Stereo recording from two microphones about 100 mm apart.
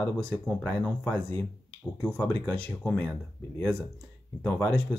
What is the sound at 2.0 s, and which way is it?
Speech, 15° left (ahead or behind).